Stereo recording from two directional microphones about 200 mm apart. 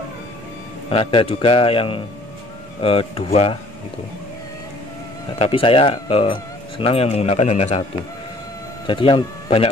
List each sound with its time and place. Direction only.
0.8 s a man's voice: 30° left (ahead or behind)
5.4 s a man's voice: 25° left (ahead or behind)
8.8 s speech: 25° left (ahead or behind)